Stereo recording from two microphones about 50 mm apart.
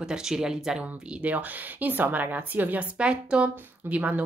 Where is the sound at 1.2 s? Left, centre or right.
Right.